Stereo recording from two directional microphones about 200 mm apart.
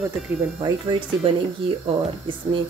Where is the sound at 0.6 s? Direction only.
25° right (ahead or behind).